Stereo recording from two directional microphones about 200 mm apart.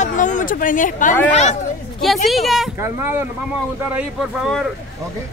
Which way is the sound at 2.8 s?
10° right (ahead or behind).